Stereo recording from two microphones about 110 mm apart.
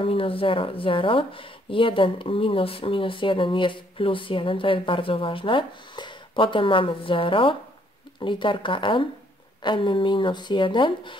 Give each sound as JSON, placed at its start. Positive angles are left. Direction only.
{"t": 0.0, "sound": "speech", "side_deg": 55}